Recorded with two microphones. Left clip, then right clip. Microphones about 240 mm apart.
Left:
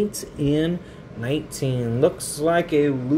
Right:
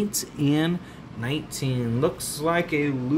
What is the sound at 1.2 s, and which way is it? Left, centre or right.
Speech, centre.